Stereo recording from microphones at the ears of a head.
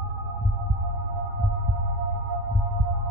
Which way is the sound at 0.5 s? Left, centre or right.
Right.